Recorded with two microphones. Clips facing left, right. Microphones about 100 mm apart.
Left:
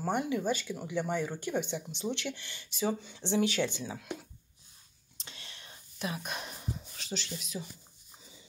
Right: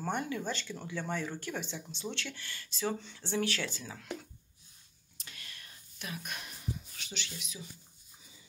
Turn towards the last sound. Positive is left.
turn(degrees=40)  # may be behind; listen again after turning